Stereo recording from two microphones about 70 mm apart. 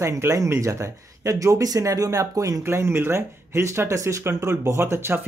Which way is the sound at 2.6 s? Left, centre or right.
Right.